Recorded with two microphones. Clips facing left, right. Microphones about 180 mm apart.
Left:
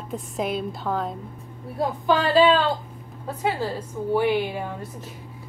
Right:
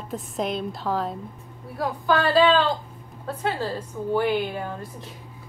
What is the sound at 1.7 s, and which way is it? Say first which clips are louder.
A woman's voice: left 1 dB; 20° left (ahead or behind).